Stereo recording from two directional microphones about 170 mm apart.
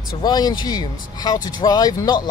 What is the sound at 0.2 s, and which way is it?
Speech, 25° left (ahead or behind).